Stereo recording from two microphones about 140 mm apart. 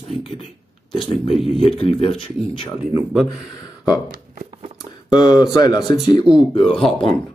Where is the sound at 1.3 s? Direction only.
Centre (ahead or behind).